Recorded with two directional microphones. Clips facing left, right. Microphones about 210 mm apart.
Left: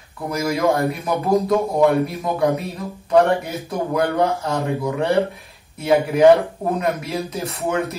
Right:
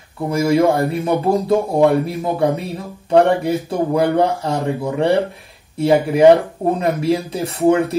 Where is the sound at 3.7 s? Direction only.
30° right (ahead or behind).